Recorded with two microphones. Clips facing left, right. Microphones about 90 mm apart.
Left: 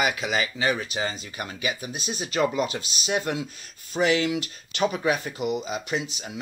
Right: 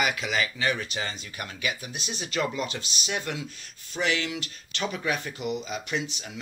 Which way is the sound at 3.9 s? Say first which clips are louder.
Left 5 dB; 35° left (ahead or behind).